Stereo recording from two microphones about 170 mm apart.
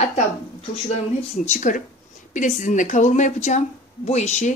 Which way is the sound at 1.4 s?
45° left (ahead or behind).